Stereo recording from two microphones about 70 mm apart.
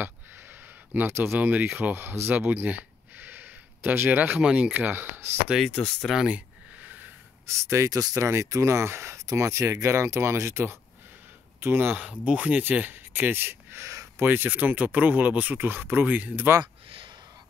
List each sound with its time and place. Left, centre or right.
0.0 s a sound: right
1.8 s speech: right
2.3 s a sound: right
4.4 s speech: centre
4.7 s speech: right
5.7 s speech: centre
6.2 s a sound: centre
7.4 s speech: right
7.9 s speech: right
8.2 s speech: right
12.1 s speech: centre